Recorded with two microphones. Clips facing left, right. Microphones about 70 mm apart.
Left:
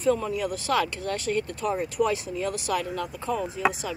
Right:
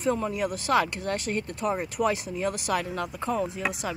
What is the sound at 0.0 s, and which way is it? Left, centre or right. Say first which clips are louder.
Speech: left 2 dB; right.